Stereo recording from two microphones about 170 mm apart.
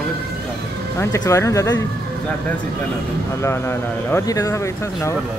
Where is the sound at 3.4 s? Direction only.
15° left (ahead or behind).